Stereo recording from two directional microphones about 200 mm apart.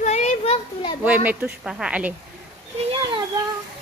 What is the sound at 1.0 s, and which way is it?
Speech, 5° right (ahead or behind).